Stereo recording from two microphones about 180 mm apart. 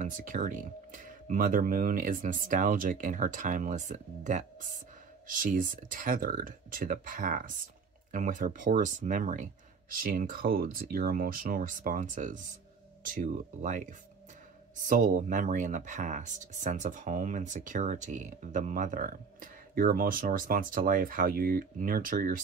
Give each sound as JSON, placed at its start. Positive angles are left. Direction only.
{"t": 0.0, "sound": "speech", "side_deg": -50}